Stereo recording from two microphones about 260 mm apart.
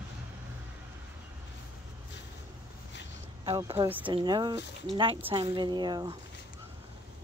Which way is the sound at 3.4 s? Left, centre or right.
Centre.